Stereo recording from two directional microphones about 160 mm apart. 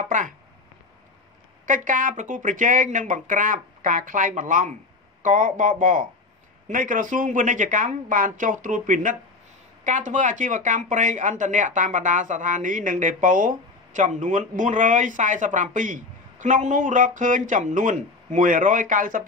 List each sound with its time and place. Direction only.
1.7 s speech: 55° right (ahead or behind)